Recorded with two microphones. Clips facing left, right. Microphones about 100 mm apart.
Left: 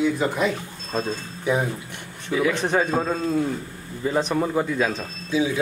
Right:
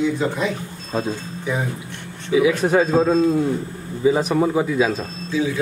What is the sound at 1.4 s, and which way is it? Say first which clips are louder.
Speech: left 3 dB; 10° left (ahead or behind).